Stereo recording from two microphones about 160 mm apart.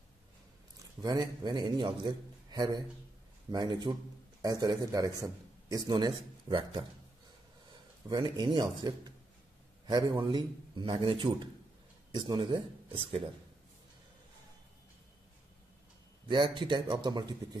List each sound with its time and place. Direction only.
1.0 s a man's voice: 25° right (ahead or behind)
8.1 s a man's voice: 30° right (ahead or behind)
16.3 s a man's voice: 30° right (ahead or behind)